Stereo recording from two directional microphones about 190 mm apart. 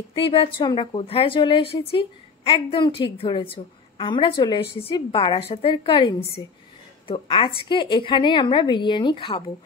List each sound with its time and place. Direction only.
0.1 s a woman's voice: 30° left (ahead or behind)